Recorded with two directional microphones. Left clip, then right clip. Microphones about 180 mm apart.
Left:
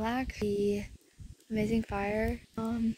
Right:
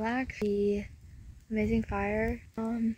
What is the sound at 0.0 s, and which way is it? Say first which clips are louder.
Speech: right 1 dB; 10° left (ahead or behind).